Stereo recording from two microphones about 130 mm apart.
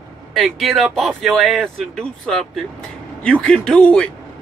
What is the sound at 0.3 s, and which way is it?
Speech, centre (ahead or behind).